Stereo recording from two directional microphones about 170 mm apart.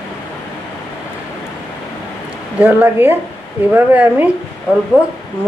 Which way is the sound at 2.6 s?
10° right (ahead or behind).